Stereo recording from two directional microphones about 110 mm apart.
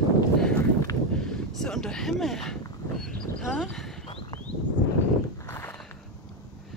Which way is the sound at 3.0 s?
5° left (ahead or behind).